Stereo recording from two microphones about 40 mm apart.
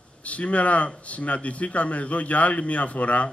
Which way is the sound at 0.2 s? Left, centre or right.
Left.